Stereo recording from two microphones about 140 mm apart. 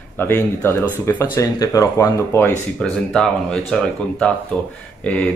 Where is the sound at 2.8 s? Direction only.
5° left (ahead or behind).